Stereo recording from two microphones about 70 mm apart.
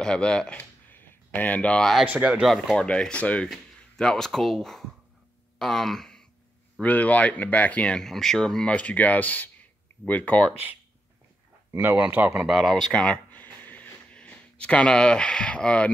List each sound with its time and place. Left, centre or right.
0.0 s speech: centre
0.6 s a sound: left
2.0 s speech: centre
2.4 s speech: centre
3.4 s speech: centre
5.6 s a sound: centre
6.8 s speech: left
8.0 s speech: centre
12.0 s speech: right
12.4 s speech: centre